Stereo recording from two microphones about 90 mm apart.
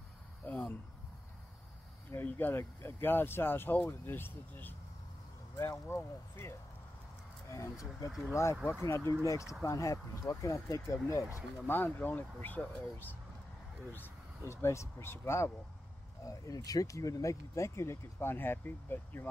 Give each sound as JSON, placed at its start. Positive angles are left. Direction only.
{"t": 0.5, "sound": "a sound", "side_deg": 20}
{"t": 2.1, "sound": "speech", "side_deg": 20}
{"t": 5.9, "sound": "speech", "side_deg": 25}
{"t": 7.5, "sound": "speech", "side_deg": 35}
{"t": 11.6, "sound": "speech", "side_deg": 20}
{"t": 16.3, "sound": "speech", "side_deg": 40}